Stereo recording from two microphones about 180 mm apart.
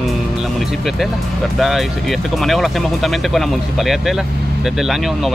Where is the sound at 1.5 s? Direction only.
Centre (ahead or behind).